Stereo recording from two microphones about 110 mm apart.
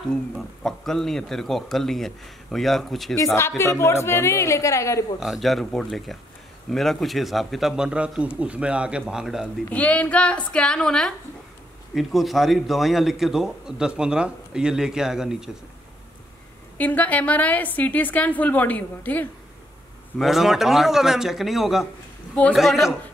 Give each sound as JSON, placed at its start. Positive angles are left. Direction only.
{"t": 0.1, "sound": "a man's voice", "side_deg": 5}
{"t": 3.3, "sound": "a woman's voice", "side_deg": 25}
{"t": 5.2, "sound": "a man's voice", "side_deg": 0}
{"t": 9.7, "sound": "a woman's voice", "side_deg": 15}
{"t": 16.7, "sound": "a woman's voice", "side_deg": 15}
{"t": 20.2, "sound": "a man's voice", "side_deg": -5}